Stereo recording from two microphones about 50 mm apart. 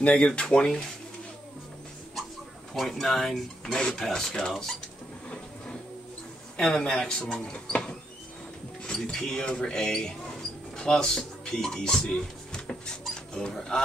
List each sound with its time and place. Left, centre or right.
0.0 s speech: left
2.7 s speech: centre
6.5 s speech: centre
7.5 s printer: left
8.8 s speech: centre
12.5 s rodents: centre
13.3 s speech: centre